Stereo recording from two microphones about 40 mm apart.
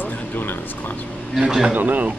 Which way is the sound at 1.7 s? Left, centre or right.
Right.